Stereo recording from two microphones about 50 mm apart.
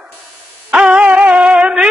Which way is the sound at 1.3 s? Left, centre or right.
Right.